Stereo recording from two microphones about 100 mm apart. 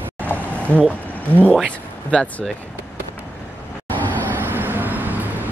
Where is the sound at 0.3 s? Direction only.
20° left (ahead or behind).